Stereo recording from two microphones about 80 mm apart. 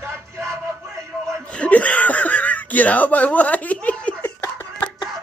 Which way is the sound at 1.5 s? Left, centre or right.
Centre.